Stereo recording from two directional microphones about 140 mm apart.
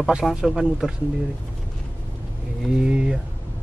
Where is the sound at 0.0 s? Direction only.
5° right (ahead or behind).